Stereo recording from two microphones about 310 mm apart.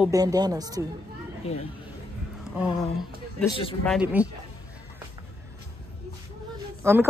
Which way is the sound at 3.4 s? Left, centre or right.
Centre.